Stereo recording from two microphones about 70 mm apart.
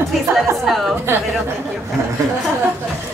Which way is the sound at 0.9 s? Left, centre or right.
Right.